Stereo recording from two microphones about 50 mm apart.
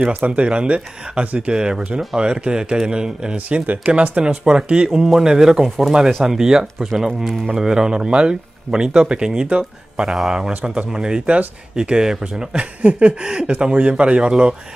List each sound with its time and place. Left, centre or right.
0.0 s speech: right
1.5 s speech: centre
3.3 s speech: right
4.2 s speech: centre
10.0 s speech: centre
10.5 s speech: right
12.5 s speech: right